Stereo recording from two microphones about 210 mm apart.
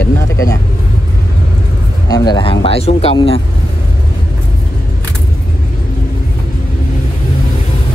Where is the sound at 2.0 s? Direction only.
20° left (ahead or behind).